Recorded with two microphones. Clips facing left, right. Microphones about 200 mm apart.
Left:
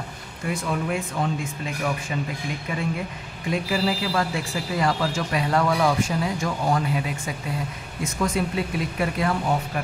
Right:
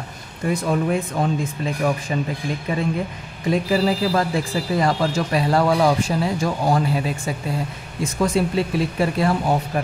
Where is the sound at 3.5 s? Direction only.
35° right (ahead or behind).